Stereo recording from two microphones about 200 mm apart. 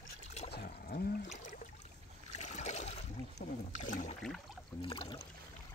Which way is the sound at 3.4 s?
40° left (ahead or behind).